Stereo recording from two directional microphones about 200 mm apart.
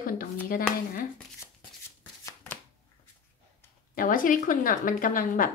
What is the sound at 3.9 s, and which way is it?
A woman's voice, 40° left (ahead or behind).